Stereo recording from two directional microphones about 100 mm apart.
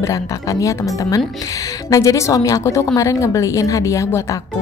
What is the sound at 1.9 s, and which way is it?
A woman's voice, 35° left (ahead or behind).